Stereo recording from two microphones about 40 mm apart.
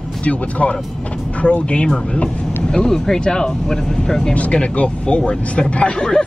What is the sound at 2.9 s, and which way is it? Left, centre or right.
Speech, centre.